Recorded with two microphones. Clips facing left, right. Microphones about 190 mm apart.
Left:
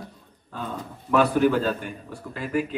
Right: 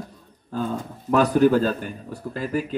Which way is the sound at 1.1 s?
40° right (ahead or behind).